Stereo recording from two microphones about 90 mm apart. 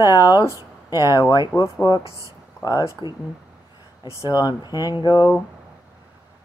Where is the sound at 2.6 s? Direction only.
45° left (ahead or behind).